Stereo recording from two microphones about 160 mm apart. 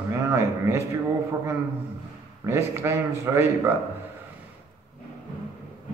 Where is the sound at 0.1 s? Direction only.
15° right (ahead or behind).